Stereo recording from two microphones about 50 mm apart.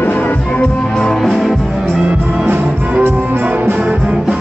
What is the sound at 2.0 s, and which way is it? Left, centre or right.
Music, right.